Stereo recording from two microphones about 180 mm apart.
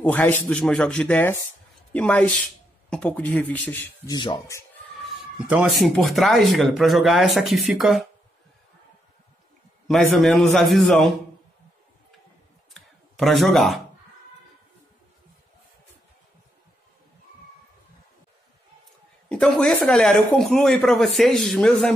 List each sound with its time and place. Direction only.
0.0 s speech: 10° left (ahead or behind)
4.1 s speech: 25° left (ahead or behind)
5.0 s speech: 5° right (ahead or behind)
9.8 s speech: centre (ahead or behind)
12.7 s a sound: centre (ahead or behind)
19.2 s speech: 5° left (ahead or behind)